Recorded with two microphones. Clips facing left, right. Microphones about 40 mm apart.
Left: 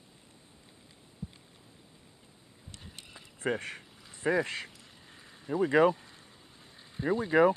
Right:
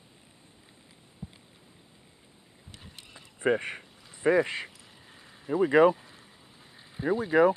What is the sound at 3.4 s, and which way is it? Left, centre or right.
Speech, centre.